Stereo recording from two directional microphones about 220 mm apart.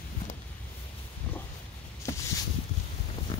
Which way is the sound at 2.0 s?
10° left (ahead or behind).